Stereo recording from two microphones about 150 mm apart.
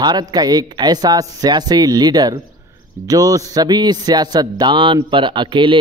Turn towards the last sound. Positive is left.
turn(degrees=-30)  # may be behind; listen again after turning